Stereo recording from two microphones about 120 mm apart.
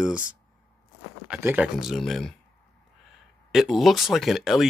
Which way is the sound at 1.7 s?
Centre (ahead or behind).